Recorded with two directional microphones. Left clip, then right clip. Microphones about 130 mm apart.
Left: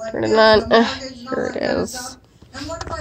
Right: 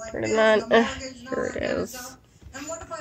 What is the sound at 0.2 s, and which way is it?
A child's voice, 20° left (ahead or behind).